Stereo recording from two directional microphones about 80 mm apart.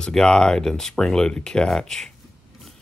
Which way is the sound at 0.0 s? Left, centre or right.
Centre.